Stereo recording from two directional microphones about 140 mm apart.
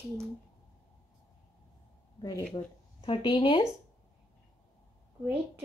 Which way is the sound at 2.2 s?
25° left (ahead or behind).